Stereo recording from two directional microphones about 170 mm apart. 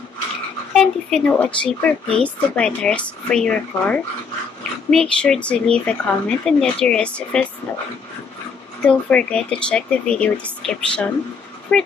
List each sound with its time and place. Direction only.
0.7 s speech: 5° left (ahead or behind)
8.8 s speech: 5° left (ahead or behind)